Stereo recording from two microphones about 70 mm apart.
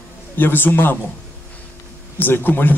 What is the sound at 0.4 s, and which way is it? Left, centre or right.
Speech, left.